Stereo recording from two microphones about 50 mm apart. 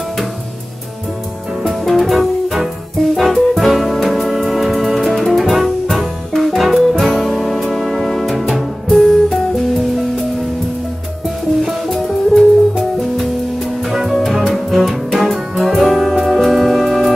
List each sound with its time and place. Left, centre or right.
1.7 s music: centre
11.6 s music: centre